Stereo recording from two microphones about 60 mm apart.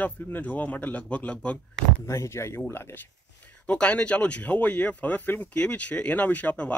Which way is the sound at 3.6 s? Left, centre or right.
Centre.